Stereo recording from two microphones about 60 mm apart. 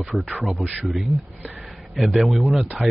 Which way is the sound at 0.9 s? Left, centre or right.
Centre.